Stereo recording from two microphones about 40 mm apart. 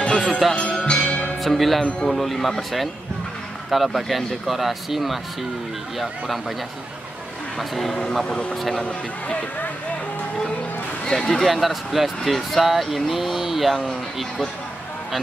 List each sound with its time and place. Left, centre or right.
0.1 s music: centre
0.8 s music: left
1.4 s speech: centre
3.7 s speech: centre
7.5 s speech: centre
8.3 s speech: left
8.5 s speech: centre
8.8 s speech: left
11.1 s speech: centre
11.4 s speech: centre